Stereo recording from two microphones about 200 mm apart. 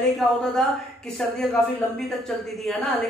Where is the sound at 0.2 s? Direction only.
Centre (ahead or behind).